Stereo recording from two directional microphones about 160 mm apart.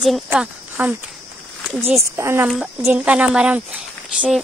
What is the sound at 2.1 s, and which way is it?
Speech, 15° right (ahead or behind).